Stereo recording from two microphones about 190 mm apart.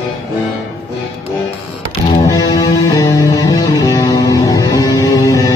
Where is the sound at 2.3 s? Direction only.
20° left (ahead or behind).